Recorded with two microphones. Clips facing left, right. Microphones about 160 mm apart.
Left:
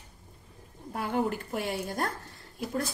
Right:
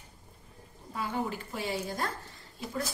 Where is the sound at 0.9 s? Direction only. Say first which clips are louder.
Left 4 dB; 55° left (ahead or behind).